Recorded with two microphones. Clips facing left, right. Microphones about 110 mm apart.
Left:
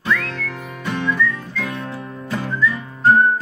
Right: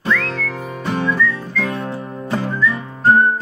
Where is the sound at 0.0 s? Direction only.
30° right (ahead or behind).